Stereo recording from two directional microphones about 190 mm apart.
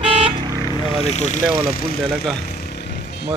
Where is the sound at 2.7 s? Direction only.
60° left (ahead or behind).